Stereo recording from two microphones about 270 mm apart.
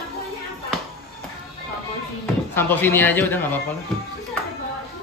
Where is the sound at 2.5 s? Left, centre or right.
Centre.